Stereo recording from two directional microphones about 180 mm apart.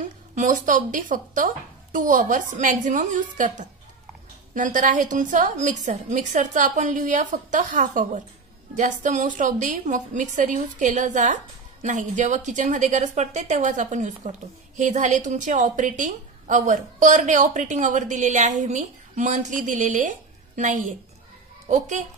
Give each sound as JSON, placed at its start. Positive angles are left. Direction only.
{"t": 0.4, "sound": "a woman's voice", "side_deg": -45}